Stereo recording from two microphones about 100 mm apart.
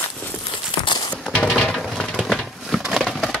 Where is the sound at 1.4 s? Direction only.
5° left (ahead or behind).